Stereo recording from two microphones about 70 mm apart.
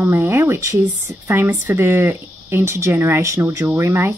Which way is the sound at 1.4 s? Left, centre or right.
Right.